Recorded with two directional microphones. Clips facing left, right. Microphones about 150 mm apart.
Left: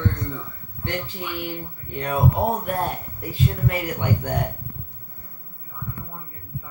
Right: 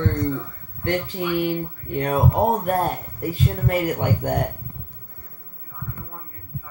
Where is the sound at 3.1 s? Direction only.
45° right (ahead or behind).